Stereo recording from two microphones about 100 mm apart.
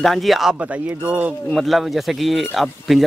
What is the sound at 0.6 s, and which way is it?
Speech, 15° right (ahead or behind).